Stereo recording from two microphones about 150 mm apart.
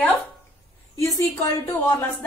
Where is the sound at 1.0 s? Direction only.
20° left (ahead or behind).